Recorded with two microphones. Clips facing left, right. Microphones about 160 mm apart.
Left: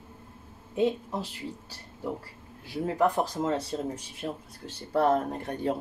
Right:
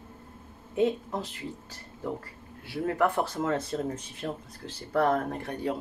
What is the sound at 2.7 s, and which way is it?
Speech, 15° left (ahead or behind).